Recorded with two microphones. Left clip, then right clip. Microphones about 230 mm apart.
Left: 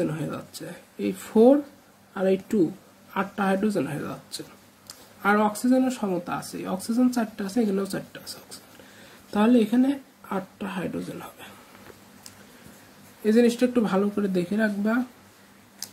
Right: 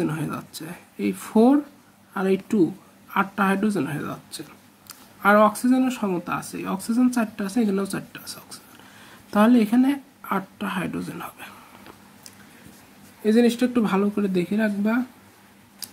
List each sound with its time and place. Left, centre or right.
0.0 s speech: right
13.2 s speech: centre